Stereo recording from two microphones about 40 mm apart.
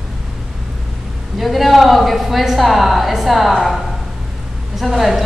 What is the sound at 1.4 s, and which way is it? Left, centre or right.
A woman's voice, centre.